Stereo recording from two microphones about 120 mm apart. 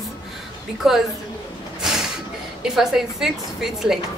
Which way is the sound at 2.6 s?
5° right (ahead or behind).